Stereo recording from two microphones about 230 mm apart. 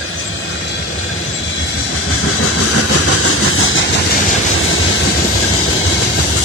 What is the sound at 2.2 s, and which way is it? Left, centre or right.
Vehicle, left.